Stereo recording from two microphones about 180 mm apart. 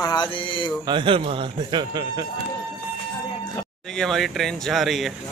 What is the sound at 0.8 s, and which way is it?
Speech, 30° right (ahead or behind).